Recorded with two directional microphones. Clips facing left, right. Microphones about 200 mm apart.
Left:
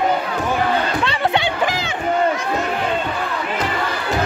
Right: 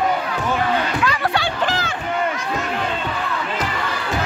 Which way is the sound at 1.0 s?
25° left (ahead or behind).